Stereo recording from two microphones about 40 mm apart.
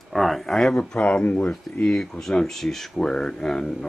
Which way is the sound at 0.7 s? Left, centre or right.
Left.